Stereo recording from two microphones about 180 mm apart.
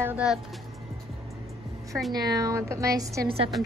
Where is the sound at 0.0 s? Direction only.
5° right (ahead or behind).